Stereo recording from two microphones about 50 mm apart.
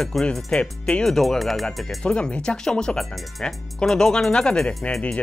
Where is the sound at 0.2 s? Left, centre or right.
Centre.